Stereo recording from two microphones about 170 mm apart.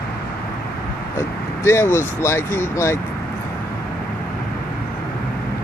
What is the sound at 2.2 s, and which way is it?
Speech, 15° left (ahead or behind).